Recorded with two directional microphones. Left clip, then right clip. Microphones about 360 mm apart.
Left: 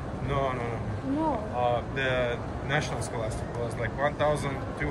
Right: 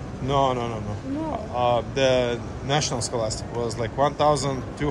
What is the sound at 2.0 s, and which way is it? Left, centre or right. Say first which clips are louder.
A man's voice: right 7 dB; centre.